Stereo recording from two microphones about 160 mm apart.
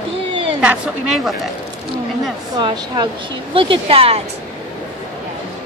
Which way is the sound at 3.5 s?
35° right (ahead or behind).